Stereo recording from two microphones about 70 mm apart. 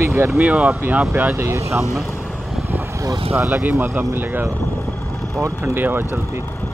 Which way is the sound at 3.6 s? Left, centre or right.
Right.